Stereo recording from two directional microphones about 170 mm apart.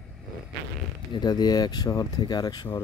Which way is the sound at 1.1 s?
25° left (ahead or behind).